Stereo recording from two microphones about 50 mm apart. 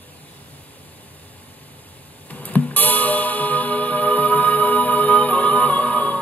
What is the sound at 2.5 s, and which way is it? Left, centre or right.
Music, left.